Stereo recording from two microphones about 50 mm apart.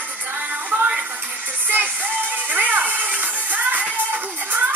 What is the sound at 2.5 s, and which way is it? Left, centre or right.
Music, right.